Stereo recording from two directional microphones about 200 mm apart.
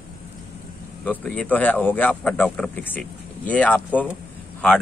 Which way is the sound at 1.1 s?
5° left (ahead or behind).